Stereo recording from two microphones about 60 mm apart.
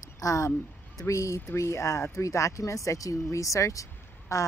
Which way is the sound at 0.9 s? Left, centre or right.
Left.